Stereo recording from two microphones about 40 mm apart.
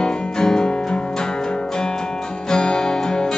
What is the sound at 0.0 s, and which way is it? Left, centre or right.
Music, centre.